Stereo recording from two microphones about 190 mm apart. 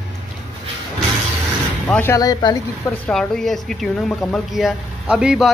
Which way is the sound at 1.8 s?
10° left (ahead or behind).